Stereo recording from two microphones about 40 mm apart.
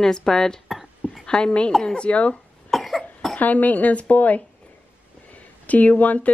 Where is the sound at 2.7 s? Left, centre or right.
Centre.